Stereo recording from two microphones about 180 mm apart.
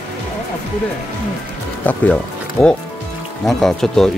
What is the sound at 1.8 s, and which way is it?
Speech, 10° left (ahead or behind).